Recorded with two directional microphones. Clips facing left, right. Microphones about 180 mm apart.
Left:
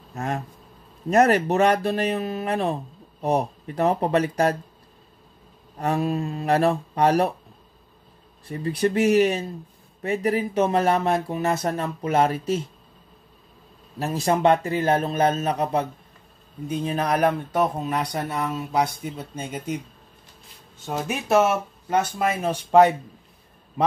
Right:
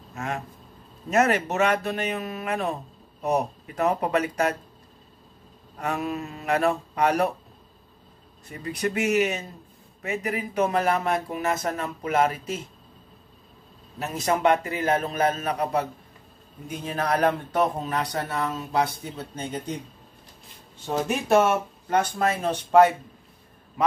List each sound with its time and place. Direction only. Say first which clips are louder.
0.1 s speech: left 3 dB; 35° left (ahead or behind)
5.8 s speech: left 5 dB; 30° left (ahead or behind)
8.5 s speech: left 5 dB; 30° left (ahead or behind)
13.9 s speech: left 3 dB; 30° left (ahead or behind); by 19.8 s 10° left (ahead or behind)
20.8 s speech: right 2 dB; centre (ahead or behind); by 22.9 s 15° left (ahead or behind)